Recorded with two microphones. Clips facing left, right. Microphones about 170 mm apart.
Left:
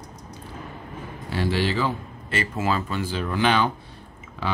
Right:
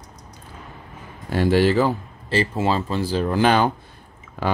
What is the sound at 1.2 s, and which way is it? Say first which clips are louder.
Speech: right 7 dB; 45° right (ahead or behind).